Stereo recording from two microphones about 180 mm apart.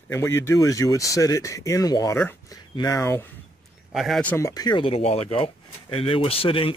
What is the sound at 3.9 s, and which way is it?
Speech, centre (ahead or behind).